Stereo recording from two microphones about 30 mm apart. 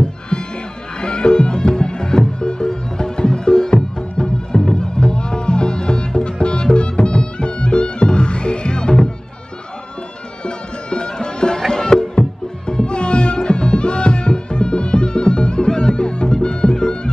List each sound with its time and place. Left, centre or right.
0.0 s music: left
10.4 s music: left